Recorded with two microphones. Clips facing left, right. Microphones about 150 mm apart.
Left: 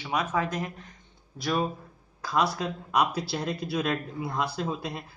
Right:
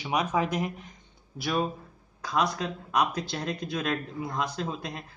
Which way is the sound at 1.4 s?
Centre (ahead or behind).